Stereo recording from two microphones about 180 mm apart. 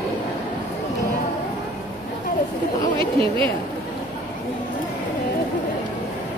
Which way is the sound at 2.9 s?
30° right (ahead or behind).